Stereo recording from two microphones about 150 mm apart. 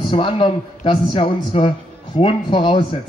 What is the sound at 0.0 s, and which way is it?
A man's voice, 35° left (ahead or behind).